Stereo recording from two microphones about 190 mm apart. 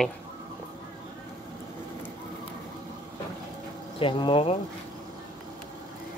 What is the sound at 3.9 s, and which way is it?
Speech, 25° left (ahead or behind).